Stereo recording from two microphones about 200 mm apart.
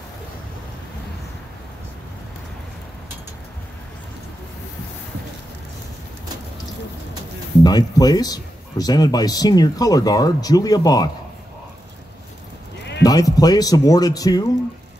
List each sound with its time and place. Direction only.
7.6 s speech: 20° left (ahead or behind)
13.0 s speech: 20° left (ahead or behind)